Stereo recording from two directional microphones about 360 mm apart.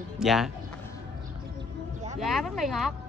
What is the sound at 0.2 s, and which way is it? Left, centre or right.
Speech, centre.